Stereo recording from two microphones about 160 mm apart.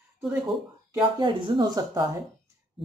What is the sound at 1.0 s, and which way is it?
Speech, 30° right (ahead or behind).